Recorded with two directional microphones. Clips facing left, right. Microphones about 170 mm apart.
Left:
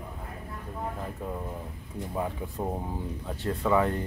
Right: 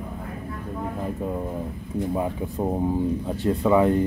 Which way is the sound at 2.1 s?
15° right (ahead or behind).